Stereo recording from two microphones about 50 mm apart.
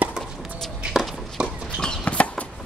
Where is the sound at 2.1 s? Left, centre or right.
Left.